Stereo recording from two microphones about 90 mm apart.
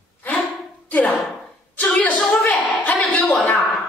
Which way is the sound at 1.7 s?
15° left (ahead or behind).